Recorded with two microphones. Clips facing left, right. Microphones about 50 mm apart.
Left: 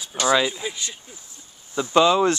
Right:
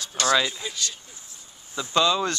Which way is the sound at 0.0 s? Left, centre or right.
Centre.